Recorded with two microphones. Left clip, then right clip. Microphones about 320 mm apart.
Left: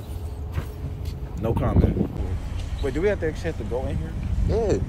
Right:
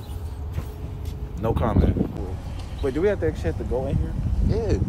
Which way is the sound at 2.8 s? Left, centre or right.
Centre.